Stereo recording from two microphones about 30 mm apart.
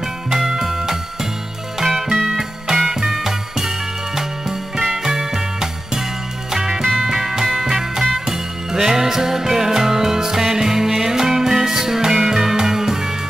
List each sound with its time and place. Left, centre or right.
0.3 s music: centre